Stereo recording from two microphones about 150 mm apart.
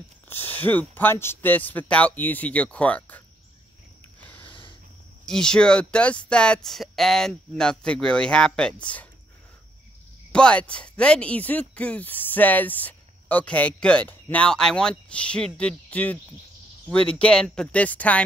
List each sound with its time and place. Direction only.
0.3 s speech: 15° left (ahead or behind)
4.2 s sniff: 10° left (ahead or behind)
5.2 s speech: 5° left (ahead or behind)
10.3 s speech: 5° left (ahead or behind)